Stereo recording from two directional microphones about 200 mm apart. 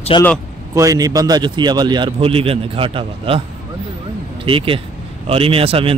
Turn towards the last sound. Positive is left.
turn(degrees=-30)  # may be behind; listen again after turning